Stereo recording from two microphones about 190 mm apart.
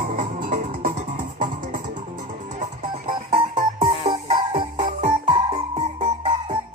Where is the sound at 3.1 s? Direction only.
40° right (ahead or behind).